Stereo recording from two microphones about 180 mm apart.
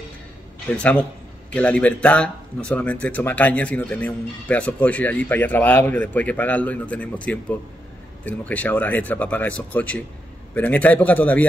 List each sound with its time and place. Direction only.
0.7 s speech: 5° left (ahead or behind)